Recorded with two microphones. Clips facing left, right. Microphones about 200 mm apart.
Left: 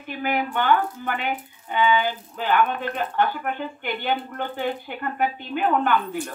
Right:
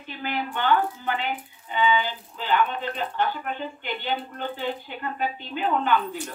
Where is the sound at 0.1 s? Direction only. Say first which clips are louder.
Left 5 dB; 50° left (ahead or behind).